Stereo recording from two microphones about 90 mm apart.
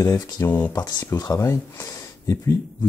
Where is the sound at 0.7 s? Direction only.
40° left (ahead or behind).